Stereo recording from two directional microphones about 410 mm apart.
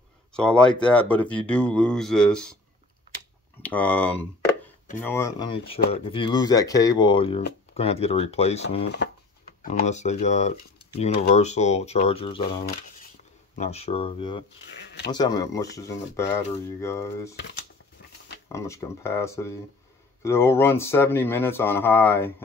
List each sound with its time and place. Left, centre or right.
0.3 s speech: centre
3.6 s speech: centre
13.6 s speech: centre
14.7 s speech: left
15.0 s speech: centre
18.5 s speech: centre